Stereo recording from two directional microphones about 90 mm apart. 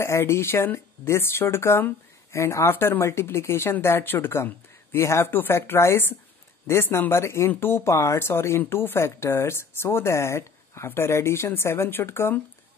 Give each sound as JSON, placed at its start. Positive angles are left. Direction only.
{"t": 0.0, "sound": "speech", "side_deg": 30}